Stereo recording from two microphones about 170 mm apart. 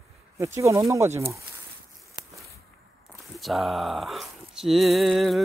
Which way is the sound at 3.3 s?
Centre (ahead or behind).